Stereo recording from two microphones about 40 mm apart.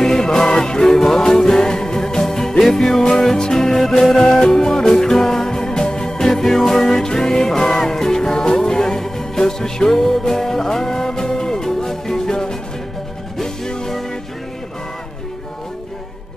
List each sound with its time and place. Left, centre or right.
0.0 s music: centre
4.2 s music: centre
13.7 s music: centre